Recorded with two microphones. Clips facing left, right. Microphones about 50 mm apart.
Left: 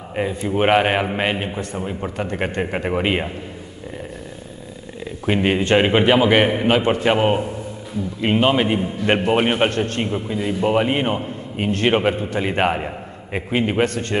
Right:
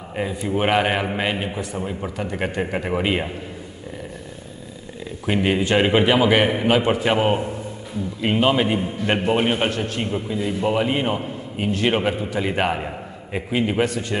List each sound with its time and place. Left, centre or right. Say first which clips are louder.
0.1 s a man's voice: left 2 dB; centre
5.2 s a man's voice: left 2 dB; centre
13.8 s a man's voice: left 1 dB; left